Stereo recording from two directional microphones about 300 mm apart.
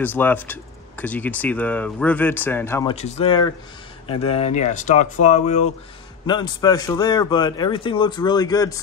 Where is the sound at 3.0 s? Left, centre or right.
Left.